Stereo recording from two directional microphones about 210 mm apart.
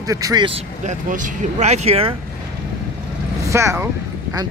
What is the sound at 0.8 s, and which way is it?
Speech, 40° right (ahead or behind).